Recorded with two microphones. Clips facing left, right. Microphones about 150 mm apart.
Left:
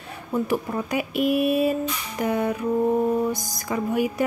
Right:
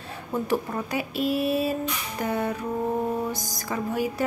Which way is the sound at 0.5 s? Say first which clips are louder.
Left 2 dB; 15° left (ahead or behind).